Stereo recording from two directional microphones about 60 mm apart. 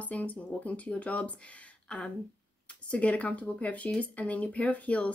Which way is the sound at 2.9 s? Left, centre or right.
Left.